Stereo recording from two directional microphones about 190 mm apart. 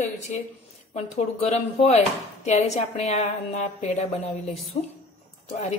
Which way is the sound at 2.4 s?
35° left (ahead or behind).